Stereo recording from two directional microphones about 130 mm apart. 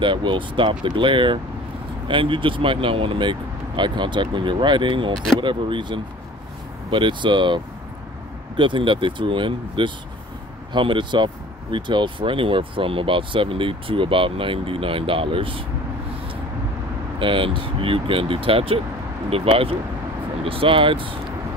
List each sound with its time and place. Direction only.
0.0 s speech: 40° right (ahead or behind)
5.1 s speech: centre (ahead or behind)
5.4 s speech: 40° right (ahead or behind)
17.2 s speech: 40° right (ahead or behind)